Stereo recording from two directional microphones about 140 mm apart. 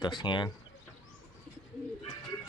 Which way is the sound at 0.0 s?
35° left (ahead or behind).